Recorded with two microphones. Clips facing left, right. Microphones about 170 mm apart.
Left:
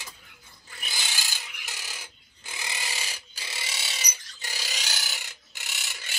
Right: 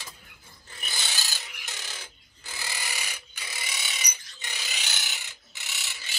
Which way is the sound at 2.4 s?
20° left (ahead or behind).